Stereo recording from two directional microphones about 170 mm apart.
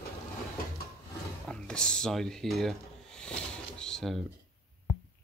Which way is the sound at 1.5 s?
5° left (ahead or behind).